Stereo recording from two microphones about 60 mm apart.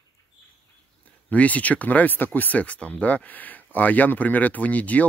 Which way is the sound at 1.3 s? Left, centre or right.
Left.